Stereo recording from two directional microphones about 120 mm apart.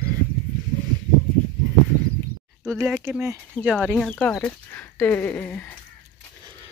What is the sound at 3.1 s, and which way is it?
Speech, 20° right (ahead or behind).